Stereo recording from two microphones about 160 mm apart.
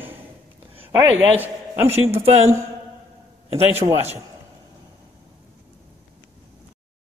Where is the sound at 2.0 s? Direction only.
40° right (ahead or behind).